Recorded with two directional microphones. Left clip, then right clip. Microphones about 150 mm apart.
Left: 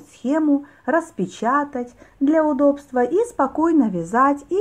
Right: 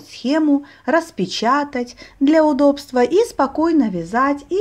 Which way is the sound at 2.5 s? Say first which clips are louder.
Right 3 dB; 25° right (ahead or behind).